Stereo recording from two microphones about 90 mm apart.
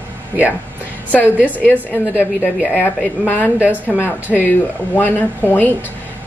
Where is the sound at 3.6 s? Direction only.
15° right (ahead or behind).